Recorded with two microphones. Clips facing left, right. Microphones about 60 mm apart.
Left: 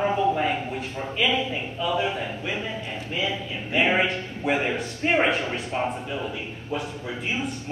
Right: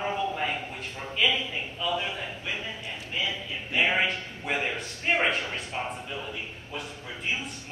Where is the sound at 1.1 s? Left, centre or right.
Centre.